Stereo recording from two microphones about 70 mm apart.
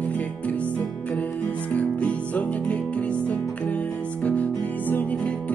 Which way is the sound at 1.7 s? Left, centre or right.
Left.